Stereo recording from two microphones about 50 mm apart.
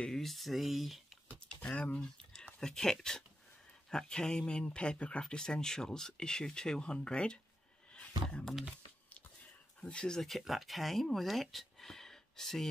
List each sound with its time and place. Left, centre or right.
0.1 s speech: centre
1.8 s a sound: left
2.6 s speech: centre
7.9 s a sound: left
9.8 s speech: left
10.4 s speech: centre